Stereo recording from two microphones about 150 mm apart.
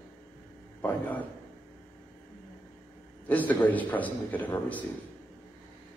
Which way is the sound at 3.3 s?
10° left (ahead or behind).